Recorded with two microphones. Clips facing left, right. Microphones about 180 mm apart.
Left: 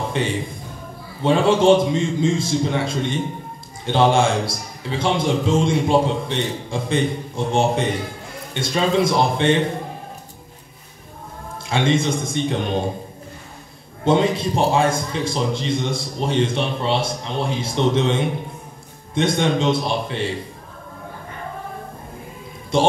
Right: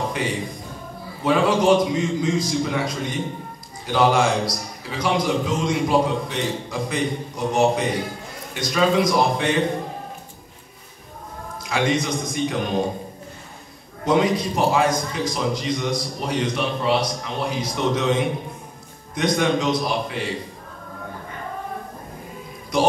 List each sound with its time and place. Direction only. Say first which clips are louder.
1.2 s a man's voice: left 3 dB; 25° left (ahead or behind)
11.6 s a man's voice: left 3 dB; 25° left (ahead or behind)
14.0 s a man's voice: left 2 dB; 25° left (ahead or behind)
22.7 s a man's voice: left 2 dB; 25° left (ahead or behind)